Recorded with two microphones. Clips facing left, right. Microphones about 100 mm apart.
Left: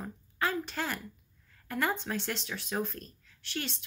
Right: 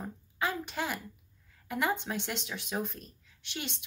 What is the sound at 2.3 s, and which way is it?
Speech, 15° right (ahead or behind).